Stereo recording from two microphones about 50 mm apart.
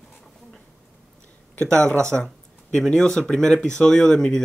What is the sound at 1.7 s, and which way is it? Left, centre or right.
Speech, centre.